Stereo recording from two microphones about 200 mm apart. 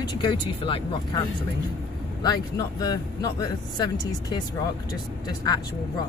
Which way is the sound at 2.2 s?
20° left (ahead or behind).